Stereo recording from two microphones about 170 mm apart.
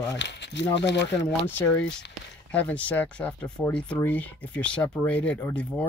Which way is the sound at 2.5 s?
10° left (ahead or behind).